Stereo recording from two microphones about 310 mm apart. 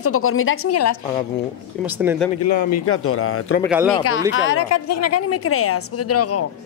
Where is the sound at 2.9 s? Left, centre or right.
Left.